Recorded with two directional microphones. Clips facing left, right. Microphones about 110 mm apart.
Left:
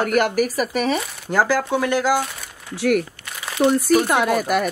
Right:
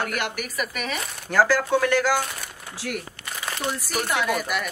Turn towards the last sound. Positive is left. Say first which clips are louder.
# left 6 dB
turn(degrees=45)  # may be behind; listen again after turning